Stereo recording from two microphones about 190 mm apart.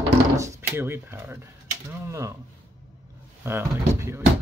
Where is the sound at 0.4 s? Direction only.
15° right (ahead or behind).